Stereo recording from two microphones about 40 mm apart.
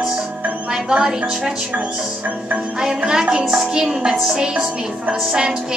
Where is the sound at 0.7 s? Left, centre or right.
Centre.